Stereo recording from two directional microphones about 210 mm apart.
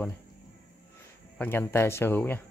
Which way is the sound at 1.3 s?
10° left (ahead or behind).